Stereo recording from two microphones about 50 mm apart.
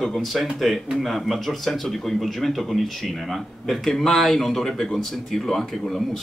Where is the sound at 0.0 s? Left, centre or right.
Centre.